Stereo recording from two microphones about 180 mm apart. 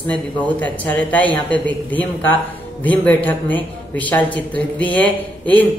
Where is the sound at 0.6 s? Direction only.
10° left (ahead or behind).